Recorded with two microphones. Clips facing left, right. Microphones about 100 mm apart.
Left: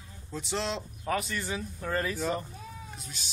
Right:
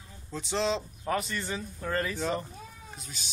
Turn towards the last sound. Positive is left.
turn(degrees=0)  # may be behind; listen again after turning